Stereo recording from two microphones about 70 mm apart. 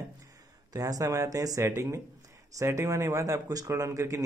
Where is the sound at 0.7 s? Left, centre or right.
Right.